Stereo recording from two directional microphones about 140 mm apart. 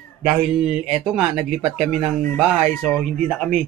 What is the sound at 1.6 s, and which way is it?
Speech, 45° right (ahead or behind).